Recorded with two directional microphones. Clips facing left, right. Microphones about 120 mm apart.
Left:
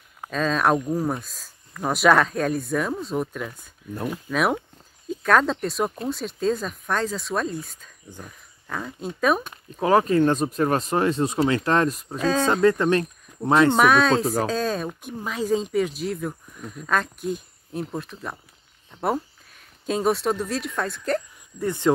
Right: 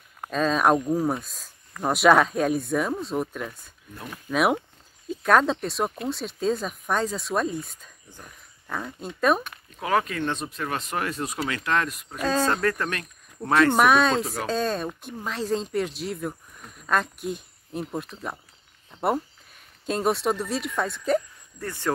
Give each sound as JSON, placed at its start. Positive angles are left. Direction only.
{"t": 0.2, "sound": "speech", "side_deg": 0}
{"t": 9.4, "sound": "speech", "side_deg": 30}
{"t": 12.2, "sound": "speech", "side_deg": -5}
{"t": 12.6, "sound": "speech", "side_deg": 20}
{"t": 13.7, "sound": "speech", "side_deg": 0}
{"t": 14.2, "sound": "speech", "side_deg": 40}
{"t": 14.5, "sound": "speech", "side_deg": 0}
{"t": 21.5, "sound": "speech", "side_deg": 20}